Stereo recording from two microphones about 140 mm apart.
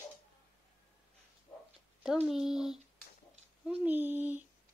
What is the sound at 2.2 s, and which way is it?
Speech, 5° right (ahead or behind).